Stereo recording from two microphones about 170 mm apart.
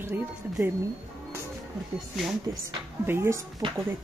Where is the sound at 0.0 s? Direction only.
15° right (ahead or behind).